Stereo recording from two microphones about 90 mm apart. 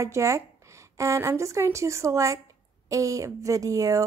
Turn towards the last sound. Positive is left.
turn(degrees=-40)  # may be behind; listen again after turning